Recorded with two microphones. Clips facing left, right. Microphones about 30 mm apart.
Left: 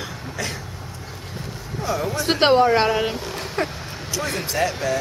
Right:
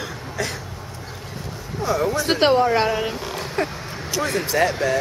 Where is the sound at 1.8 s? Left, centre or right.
Right.